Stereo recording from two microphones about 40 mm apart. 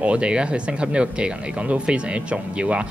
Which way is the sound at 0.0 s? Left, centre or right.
Right.